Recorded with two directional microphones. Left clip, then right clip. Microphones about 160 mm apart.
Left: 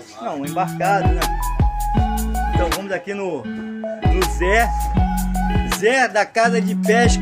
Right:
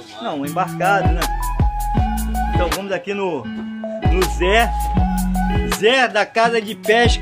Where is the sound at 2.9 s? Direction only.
15° right (ahead or behind).